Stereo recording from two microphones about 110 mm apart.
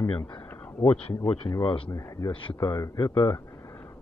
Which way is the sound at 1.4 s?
45° left (ahead or behind).